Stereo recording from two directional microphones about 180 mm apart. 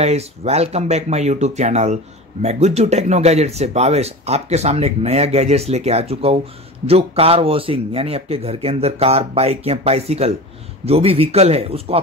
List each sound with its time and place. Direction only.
0.0 s speech: 35° right (ahead or behind)